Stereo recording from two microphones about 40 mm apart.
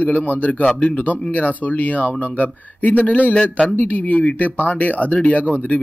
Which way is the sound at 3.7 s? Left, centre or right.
Left.